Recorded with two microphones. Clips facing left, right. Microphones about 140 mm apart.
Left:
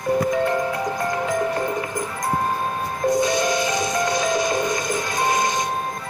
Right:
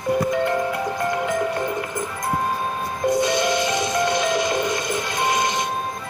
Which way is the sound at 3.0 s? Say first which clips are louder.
Even; 25° right (ahead or behind).